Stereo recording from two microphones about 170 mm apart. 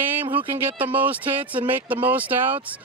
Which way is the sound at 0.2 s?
30° right (ahead or behind).